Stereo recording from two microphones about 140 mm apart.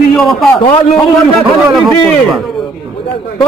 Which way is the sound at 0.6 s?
40° left (ahead or behind).